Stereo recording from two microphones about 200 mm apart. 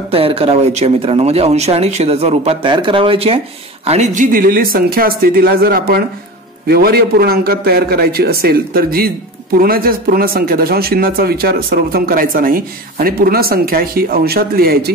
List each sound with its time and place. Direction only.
0.1 s speech: 30° right (ahead or behind); by 14.9 s 50° right (ahead or behind)